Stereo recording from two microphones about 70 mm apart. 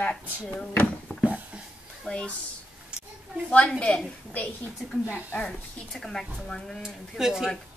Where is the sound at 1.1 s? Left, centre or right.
Left.